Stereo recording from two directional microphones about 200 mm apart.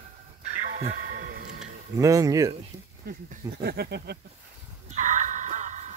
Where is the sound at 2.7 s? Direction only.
20° right (ahead or behind).